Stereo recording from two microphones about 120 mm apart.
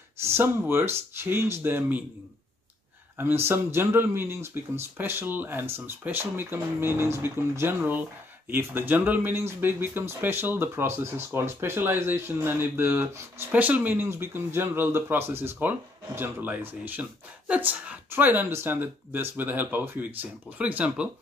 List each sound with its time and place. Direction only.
0.2 s speech: 20° right (ahead or behind)
3.2 s speech: 20° right (ahead or behind)